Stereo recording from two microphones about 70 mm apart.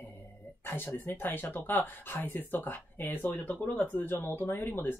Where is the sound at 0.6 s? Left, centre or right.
Left.